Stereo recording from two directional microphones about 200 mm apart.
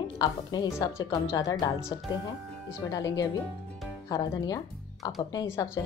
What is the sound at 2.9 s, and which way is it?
Speech, 15° left (ahead or behind).